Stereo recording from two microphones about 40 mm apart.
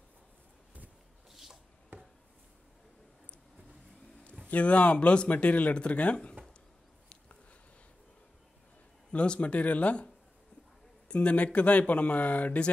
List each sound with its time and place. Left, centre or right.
1.3 s rub: centre
1.9 s a sound: right
4.5 s speech: left
9.1 s speech: left